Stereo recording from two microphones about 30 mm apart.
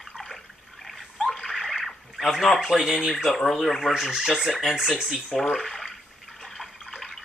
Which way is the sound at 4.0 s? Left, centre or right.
Centre.